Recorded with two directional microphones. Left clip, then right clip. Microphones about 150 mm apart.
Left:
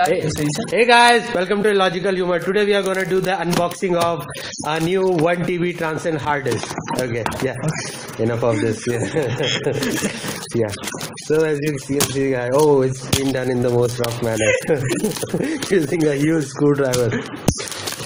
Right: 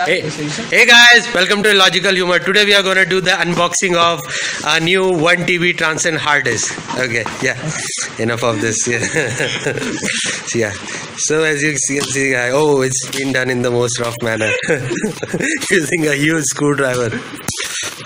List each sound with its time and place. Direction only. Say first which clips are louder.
0.7 s a man's voice: right 6 dB; 5° right (ahead or behind)
11.2 s a man's voice: right 4 dB; 5° right (ahead or behind)